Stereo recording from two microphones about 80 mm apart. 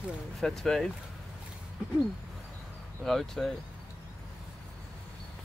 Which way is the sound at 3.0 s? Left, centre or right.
Centre.